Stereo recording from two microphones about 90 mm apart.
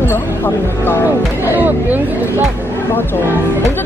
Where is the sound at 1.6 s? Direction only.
20° right (ahead or behind).